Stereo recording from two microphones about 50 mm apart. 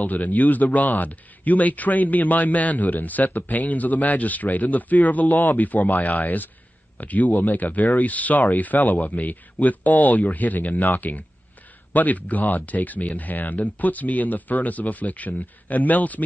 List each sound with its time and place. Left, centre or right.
0.0 s speech: left